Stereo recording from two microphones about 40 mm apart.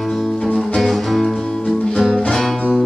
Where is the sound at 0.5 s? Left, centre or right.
Centre.